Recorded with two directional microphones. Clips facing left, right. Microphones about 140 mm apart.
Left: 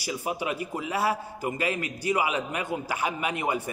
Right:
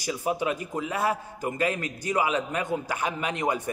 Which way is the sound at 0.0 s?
10° left (ahead or behind).